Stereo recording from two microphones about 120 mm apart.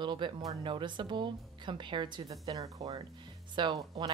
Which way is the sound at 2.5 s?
30° right (ahead or behind).